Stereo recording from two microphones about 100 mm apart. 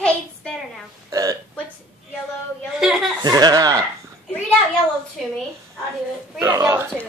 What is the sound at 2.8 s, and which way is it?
Chuckle, 5° right (ahead or behind).